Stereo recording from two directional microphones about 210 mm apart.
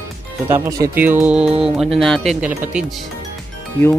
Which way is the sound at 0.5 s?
15° right (ahead or behind).